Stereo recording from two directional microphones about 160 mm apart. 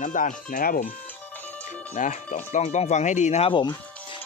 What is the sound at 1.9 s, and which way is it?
Speech, 50° left (ahead or behind).